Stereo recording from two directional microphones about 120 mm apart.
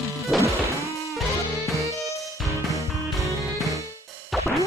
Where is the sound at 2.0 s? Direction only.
Centre (ahead or behind).